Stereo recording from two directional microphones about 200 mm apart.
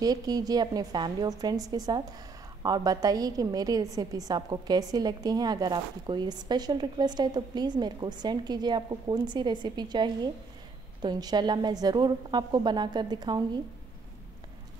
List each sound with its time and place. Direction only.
0.0 s a woman's voice: 20° right (ahead or behind)